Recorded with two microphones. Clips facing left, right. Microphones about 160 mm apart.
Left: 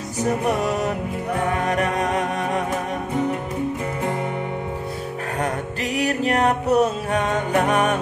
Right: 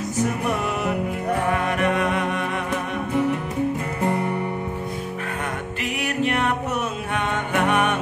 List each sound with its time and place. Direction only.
0.6 s music: 40° left (ahead or behind)
5.9 s music: 40° left (ahead or behind)